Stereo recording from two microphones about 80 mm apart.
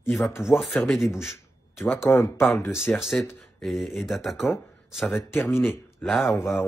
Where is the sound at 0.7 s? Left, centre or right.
Centre.